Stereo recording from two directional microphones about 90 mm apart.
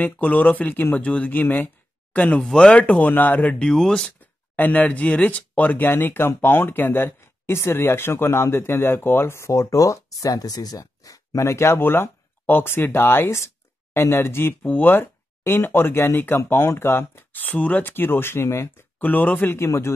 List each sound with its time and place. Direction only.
0.0 s speech: 15° left (ahead or behind)
4.6 s speech: 15° left (ahead or behind)